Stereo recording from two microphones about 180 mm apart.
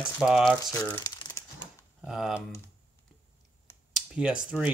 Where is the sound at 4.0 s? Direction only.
5° right (ahead or behind).